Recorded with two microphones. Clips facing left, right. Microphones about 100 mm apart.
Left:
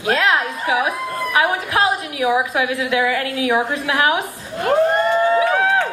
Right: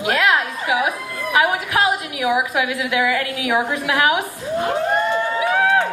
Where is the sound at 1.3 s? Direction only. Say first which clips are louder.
Right 1 dB; 25° left (ahead or behind).